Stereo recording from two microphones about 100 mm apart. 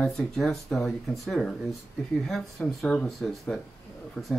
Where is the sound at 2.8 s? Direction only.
5° left (ahead or behind).